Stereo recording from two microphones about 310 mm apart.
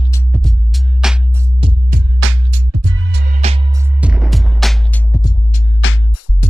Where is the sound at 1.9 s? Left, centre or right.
Right.